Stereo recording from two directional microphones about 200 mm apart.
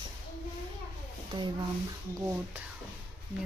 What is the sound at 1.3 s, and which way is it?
Speech, 20° right (ahead or behind).